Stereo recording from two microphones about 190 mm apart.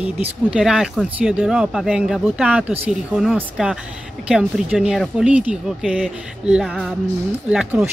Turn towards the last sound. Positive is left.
turn(degrees=-5)  # may be behind; listen again after turning